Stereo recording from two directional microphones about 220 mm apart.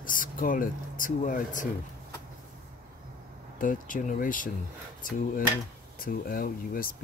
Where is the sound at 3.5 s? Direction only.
40° left (ahead or behind).